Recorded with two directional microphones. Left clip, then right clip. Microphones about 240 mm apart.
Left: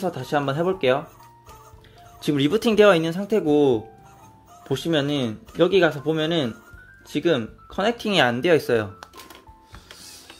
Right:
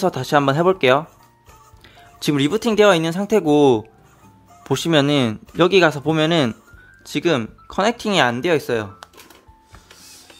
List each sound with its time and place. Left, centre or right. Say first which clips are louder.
0.0 s a man's voice: right 7 dB; right
2.1 s a man's voice: right 2 dB; right